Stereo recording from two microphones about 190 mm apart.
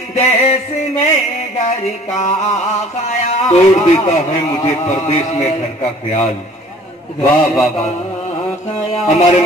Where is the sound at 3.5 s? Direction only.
35° left (ahead or behind).